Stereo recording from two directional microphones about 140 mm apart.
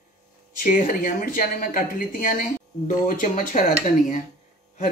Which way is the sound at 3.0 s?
65° left (ahead or behind).